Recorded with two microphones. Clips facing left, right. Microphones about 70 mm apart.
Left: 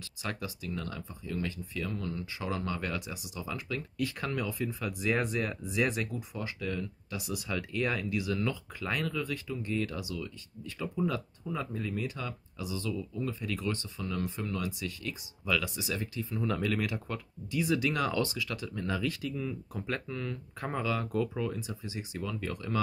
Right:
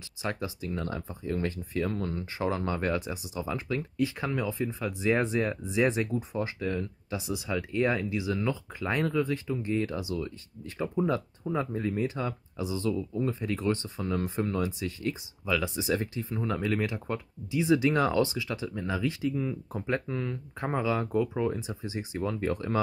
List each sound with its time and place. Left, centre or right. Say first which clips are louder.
0.2 s speech: right 5 dB; right
16.4 s speech: right 2 dB; centre